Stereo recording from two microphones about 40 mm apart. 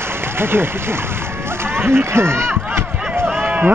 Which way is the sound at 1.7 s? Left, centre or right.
Right.